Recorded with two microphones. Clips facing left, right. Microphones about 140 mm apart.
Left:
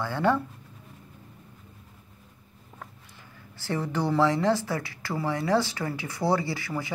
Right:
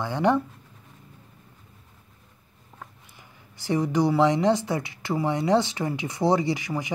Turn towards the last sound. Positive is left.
turn(degrees=-20)  # may be behind; listen again after turning